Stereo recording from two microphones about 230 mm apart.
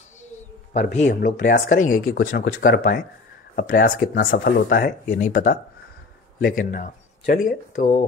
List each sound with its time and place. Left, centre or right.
0.7 s speech: left